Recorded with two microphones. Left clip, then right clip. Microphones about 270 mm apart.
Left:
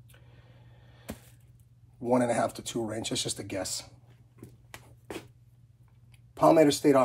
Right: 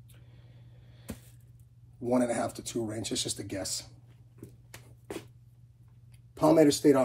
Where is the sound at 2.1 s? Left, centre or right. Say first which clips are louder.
Left 3 dB; left.